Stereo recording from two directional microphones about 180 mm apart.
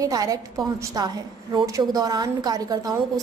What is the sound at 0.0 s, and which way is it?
A woman's voice, 20° right (ahead or behind).